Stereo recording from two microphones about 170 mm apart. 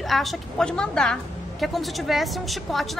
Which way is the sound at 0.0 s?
Centre (ahead or behind).